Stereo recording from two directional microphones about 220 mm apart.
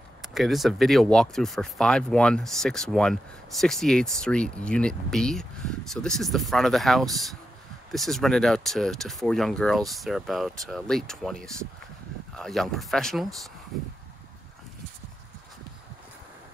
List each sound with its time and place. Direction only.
0.2 s speech: centre (ahead or behind)
12.4 s speech: centre (ahead or behind)